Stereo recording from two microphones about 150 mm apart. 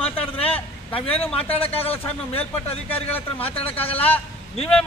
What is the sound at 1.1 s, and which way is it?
Speech, 40° left (ahead or behind).